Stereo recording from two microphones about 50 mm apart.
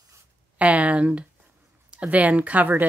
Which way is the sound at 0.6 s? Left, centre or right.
Right.